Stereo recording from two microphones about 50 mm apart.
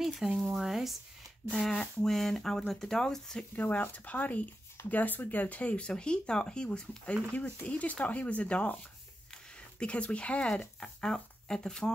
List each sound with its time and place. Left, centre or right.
0.4 s speech: centre
1.5 s speech: centre
3.5 s speech: left
7.3 s speech: left
9.3 s a sound: left
10.8 s speech: centre